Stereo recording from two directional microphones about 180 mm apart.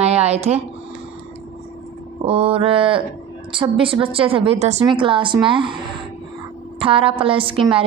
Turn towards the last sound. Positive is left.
turn(degrees=-30)  # may be behind; listen again after turning